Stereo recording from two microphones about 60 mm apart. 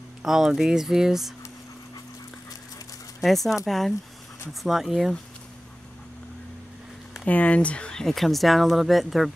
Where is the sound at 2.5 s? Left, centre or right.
Left.